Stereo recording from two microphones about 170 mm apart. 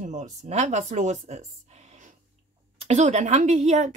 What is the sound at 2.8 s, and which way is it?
A woman's voice, 40° right (ahead or behind).